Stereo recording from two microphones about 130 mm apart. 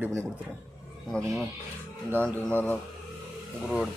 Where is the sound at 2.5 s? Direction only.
15° left (ahead or behind).